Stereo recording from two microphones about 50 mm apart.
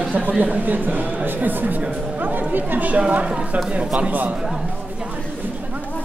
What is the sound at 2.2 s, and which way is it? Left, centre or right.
Chatter, right.